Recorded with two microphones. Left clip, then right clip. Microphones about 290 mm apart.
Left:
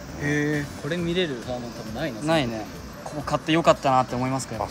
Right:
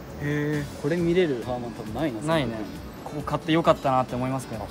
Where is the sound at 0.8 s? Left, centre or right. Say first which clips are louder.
Right 4 dB; right.